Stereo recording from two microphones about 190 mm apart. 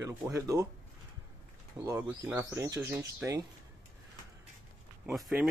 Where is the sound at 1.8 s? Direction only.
15° right (ahead or behind).